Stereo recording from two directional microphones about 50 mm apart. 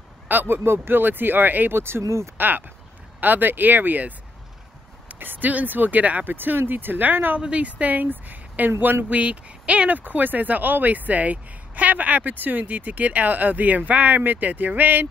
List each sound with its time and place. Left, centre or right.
0.3 s speech: right
1.8 s speech: right
2.0 s speech: right
2.3 s speech: right
5.2 s speech: right
6.3 s speech: right
7.3 s speech: right
9.1 s speech: right
9.8 s speech: right